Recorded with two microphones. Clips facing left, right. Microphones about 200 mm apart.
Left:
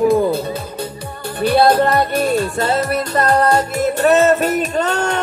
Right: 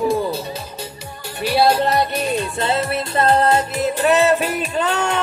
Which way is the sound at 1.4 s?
55° left (ahead or behind).